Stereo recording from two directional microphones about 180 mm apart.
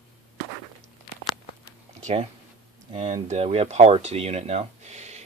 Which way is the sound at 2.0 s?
45° right (ahead or behind).